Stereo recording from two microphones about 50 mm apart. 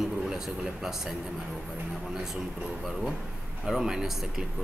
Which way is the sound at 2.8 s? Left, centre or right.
Centre.